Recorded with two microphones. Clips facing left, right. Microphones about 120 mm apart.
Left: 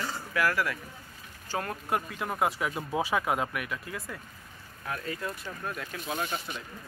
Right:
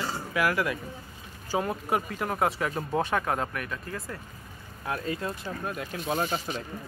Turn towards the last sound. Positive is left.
turn(degrees=-35)  # may be behind; listen again after turning